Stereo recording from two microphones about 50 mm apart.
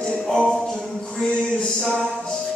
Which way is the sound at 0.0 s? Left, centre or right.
Centre.